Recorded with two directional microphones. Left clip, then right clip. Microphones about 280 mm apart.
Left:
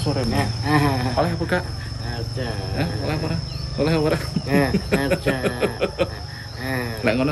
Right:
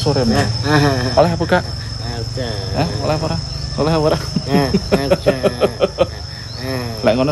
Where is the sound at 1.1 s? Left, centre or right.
Right.